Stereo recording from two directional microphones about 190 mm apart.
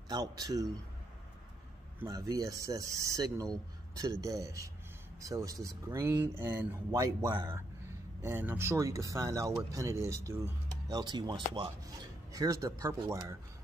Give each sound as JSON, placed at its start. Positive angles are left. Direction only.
{"t": 0.1, "sound": "speech", "side_deg": -20}
{"t": 2.0, "sound": "speech", "side_deg": -20}